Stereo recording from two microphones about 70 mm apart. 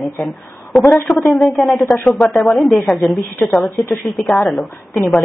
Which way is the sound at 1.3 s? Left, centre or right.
Centre.